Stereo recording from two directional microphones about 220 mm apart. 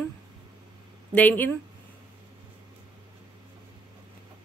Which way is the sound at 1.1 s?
5° left (ahead or behind).